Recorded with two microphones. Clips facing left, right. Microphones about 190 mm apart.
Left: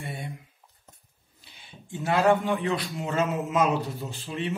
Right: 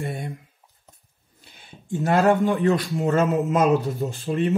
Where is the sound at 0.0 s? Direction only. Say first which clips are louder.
Right 6 dB; 50° right (ahead or behind).